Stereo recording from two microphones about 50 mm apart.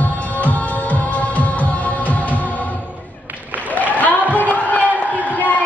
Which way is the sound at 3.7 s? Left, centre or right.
Left.